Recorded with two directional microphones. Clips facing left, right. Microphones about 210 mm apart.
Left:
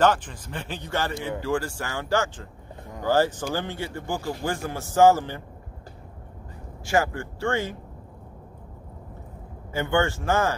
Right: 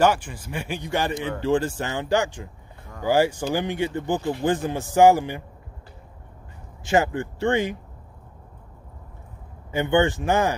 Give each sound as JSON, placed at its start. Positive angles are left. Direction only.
{"t": 0.0, "sound": "a man's voice", "side_deg": -10}
{"t": 6.8, "sound": "speech", "side_deg": -20}
{"t": 9.7, "sound": "a man's voice", "side_deg": -20}